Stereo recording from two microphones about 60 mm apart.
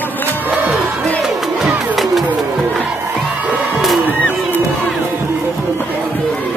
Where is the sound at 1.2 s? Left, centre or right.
Centre.